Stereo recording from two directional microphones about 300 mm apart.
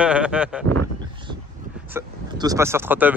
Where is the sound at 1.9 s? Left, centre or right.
Centre.